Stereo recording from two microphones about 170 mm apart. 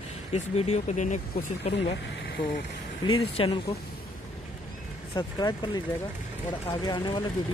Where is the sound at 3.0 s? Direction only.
30° left (ahead or behind).